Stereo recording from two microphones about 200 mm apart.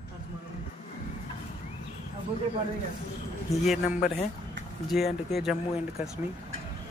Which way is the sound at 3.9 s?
40° left (ahead or behind).